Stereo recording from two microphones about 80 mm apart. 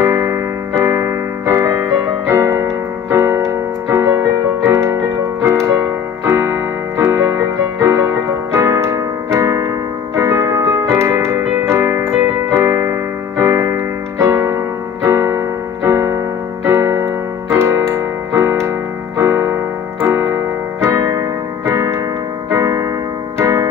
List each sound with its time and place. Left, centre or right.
0.0 s music: right
2.2 s keyboard: right
3.1 s music: right
6.2 s keyboard: right
8.5 s music: right
12.6 s keyboard: right
13.4 s music: right
15.0 s keyboard: right
17.9 s music: right
19.1 s keyboard: right
21.6 s music: right